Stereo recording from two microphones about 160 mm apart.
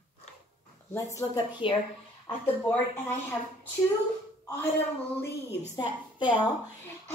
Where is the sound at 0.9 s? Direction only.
20° left (ahead or behind).